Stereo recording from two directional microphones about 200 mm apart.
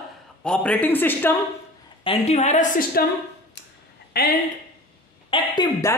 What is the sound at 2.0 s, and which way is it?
A woman's voice, 30° left (ahead or behind).